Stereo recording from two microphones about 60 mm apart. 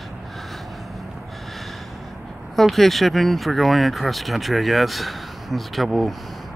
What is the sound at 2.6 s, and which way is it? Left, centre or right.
Speech, centre.